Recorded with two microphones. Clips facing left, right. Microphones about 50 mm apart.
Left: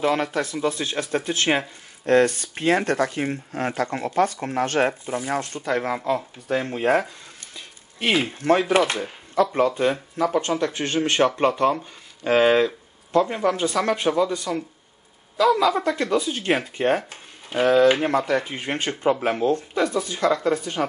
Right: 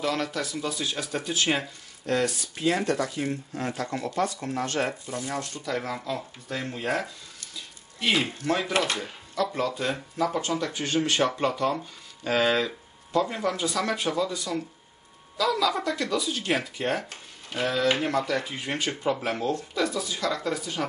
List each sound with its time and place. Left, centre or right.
0.0 s speech: left